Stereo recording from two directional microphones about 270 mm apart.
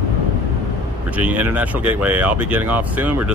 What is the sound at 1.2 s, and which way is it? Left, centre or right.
Speech, centre.